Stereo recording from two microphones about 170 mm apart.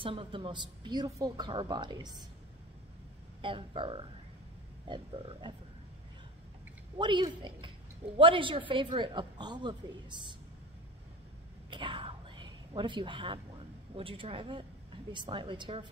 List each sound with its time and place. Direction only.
0.0 s speech: 30° right (ahead or behind)
3.4 s speech: 30° right (ahead or behind)
7.0 s speech: 25° right (ahead or behind)
11.7 s a sound: 30° right (ahead or behind)
13.9 s speech: 30° right (ahead or behind)